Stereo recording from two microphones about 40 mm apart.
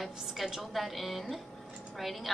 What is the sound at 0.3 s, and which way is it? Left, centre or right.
A woman's voice, centre.